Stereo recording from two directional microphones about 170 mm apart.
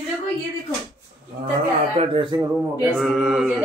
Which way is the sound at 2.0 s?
30° right (ahead or behind).